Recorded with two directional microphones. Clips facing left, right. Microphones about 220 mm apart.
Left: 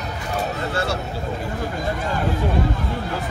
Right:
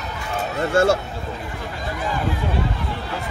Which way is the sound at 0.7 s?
50° right (ahead or behind).